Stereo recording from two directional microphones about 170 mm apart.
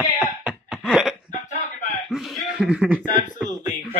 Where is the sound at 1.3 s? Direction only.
45° left (ahead or behind).